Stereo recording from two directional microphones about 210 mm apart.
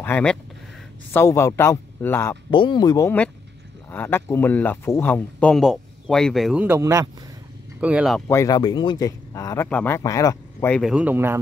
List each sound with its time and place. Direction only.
0.0 s speech: 5° left (ahead or behind)
2.5 s speech: 20° left (ahead or behind); by 7.1 s 15° right (ahead or behind)
7.8 s speech: 5° right (ahead or behind)
8.3 s speech: 15° left (ahead or behind)
10.8 s a man's voice: 5° right (ahead or behind)